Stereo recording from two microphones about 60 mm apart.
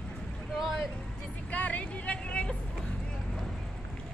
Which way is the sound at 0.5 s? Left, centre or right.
Centre.